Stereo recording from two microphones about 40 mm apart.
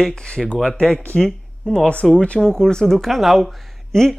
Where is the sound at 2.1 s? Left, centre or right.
Left.